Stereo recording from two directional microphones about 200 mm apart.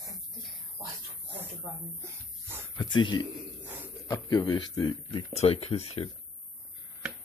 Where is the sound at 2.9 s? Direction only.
25° left (ahead or behind).